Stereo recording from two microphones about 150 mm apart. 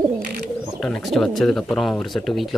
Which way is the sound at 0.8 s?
Centre (ahead or behind).